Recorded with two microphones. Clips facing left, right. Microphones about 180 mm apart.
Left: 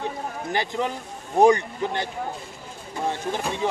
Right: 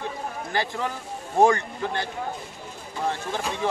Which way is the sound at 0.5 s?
20° left (ahead or behind).